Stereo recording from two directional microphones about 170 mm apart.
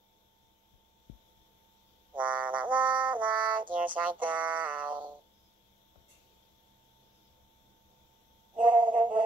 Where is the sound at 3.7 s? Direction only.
10° right (ahead or behind).